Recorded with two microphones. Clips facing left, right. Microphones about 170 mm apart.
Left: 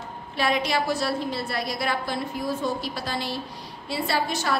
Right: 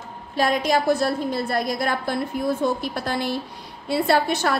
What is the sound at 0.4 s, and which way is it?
A woman's voice, 45° right (ahead or behind).